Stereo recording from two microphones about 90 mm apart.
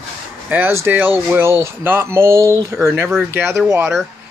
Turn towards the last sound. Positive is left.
turn(degrees=-30)  # may be behind; listen again after turning